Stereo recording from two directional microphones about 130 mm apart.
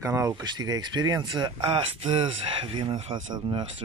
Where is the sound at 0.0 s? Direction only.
25° right (ahead or behind).